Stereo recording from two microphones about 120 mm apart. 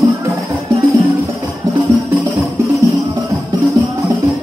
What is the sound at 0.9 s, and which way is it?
Music, 30° right (ahead or behind).